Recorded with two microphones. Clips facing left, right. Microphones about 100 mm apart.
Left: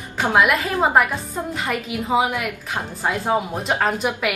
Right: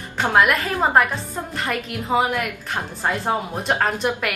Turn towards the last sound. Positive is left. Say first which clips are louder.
# left 1 dB
turn(degrees=5)  # may be behind; listen again after turning